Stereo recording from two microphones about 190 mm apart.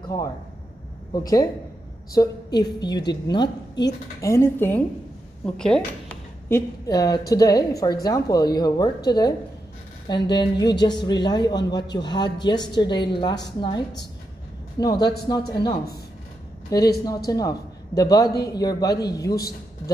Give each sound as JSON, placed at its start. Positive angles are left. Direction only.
{"t": 1.1, "sound": "a woman's voice", "side_deg": 20}
{"t": 5.4, "sound": "a sound", "side_deg": 5}
{"t": 6.9, "sound": "speech", "side_deg": 20}
{"t": 17.0, "sound": "speech", "side_deg": 20}